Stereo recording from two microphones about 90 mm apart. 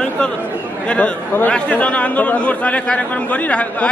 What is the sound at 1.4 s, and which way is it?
A man's voice, 15° left (ahead or behind).